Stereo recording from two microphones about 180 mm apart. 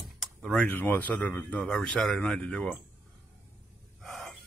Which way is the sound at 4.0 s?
Centre (ahead or behind).